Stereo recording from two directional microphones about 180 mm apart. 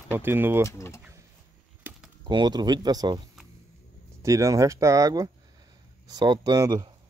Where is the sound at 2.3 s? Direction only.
25° right (ahead or behind).